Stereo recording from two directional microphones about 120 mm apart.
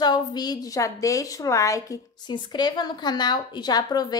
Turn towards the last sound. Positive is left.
turn(degrees=35)  # may be behind; listen again after turning